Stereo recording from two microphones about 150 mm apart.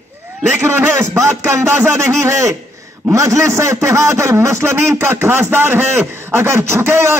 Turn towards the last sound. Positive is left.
turn(degrees=-15)  # may be behind; listen again after turning